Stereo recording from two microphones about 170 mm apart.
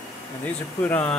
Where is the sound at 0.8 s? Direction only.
10° left (ahead or behind).